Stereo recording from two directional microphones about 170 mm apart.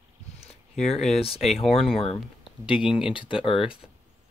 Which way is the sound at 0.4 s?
40° left (ahead or behind).